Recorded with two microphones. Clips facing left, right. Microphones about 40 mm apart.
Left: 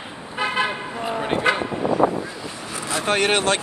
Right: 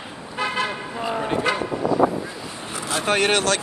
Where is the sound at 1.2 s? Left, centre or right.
Left.